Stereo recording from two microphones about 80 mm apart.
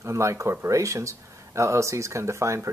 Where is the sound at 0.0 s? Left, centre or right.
Right.